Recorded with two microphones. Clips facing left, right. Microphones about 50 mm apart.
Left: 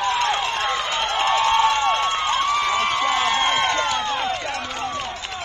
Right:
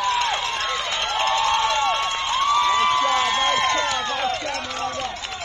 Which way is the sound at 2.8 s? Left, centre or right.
Left.